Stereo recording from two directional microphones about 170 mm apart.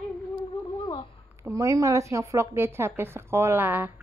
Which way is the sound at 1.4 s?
20° right (ahead or behind).